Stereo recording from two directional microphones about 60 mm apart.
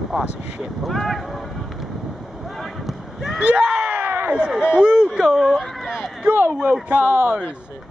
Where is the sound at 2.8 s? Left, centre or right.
Centre.